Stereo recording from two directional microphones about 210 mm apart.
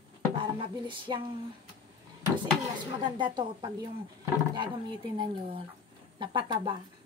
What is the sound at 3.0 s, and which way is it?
Speech, 20° right (ahead or behind).